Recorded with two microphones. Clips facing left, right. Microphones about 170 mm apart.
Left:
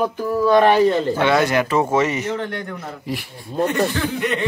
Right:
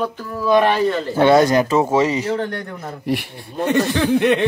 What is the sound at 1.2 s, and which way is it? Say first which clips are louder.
Speech: right 9 dB; 35° right (ahead or behind).